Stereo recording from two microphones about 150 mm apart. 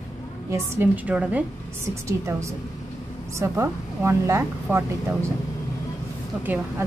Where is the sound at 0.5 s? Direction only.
15° right (ahead or behind).